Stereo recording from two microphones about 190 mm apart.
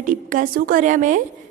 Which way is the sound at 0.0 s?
45° right (ahead or behind).